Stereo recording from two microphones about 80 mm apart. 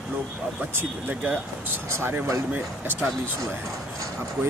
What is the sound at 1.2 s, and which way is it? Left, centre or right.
Speech, centre.